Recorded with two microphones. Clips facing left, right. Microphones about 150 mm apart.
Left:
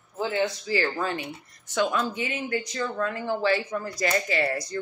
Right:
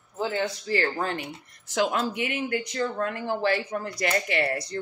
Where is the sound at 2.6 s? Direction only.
55° right (ahead or behind).